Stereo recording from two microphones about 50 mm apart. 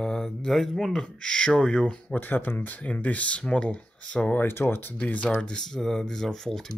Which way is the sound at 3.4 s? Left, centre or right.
Centre.